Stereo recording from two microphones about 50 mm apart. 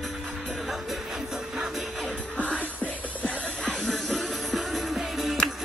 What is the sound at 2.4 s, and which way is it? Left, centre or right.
Music, left.